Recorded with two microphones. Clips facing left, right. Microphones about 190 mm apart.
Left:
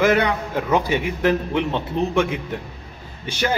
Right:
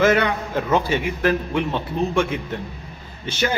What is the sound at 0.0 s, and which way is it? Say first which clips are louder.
A man's voice: even; 15° left (ahead or behind).